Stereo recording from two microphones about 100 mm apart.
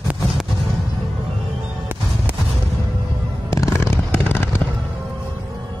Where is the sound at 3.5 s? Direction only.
30° left (ahead or behind).